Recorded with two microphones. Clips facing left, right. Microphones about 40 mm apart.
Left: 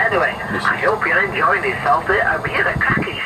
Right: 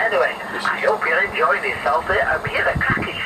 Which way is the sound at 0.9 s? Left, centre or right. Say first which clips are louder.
Left 2 dB; centre.